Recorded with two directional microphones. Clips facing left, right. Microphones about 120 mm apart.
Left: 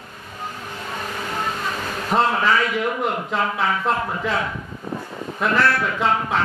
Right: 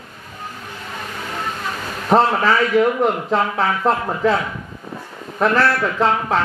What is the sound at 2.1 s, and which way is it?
A man's voice, 35° right (ahead or behind).